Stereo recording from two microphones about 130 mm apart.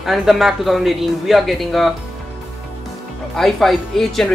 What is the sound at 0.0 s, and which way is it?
Speech, centre (ahead or behind).